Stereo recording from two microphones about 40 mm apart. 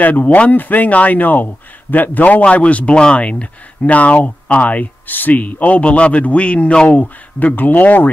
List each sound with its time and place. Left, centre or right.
0.0 s speech: left
7.0 s speech: left